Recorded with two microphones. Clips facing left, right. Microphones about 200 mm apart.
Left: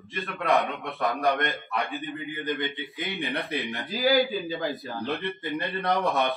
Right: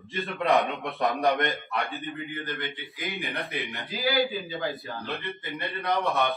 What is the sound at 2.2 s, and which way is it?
Speech, 15° left (ahead or behind).